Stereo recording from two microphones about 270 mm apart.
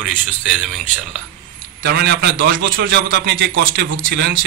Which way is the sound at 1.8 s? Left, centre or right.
Right.